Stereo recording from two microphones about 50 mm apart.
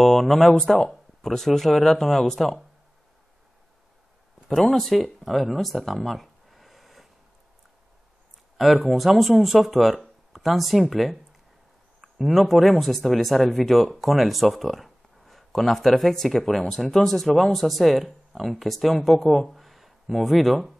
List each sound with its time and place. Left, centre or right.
0.0 s speech: centre
4.6 s speech: centre
8.5 s speech: centre